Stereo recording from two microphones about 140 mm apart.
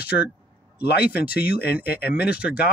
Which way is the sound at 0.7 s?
90° left.